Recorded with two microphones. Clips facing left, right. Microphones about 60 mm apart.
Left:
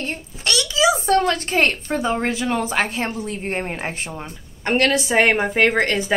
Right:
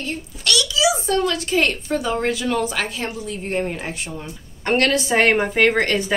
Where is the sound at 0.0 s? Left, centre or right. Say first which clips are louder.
Even; left.